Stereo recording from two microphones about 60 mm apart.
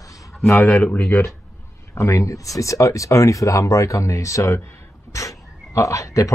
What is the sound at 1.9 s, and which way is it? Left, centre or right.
Speech, left.